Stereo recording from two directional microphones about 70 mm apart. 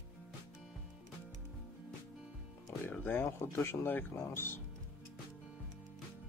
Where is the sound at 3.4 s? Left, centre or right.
Left.